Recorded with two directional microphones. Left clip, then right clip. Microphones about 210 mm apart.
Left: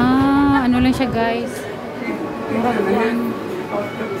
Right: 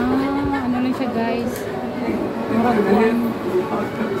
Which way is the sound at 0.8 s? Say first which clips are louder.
Left 4 dB; 25° left (ahead or behind).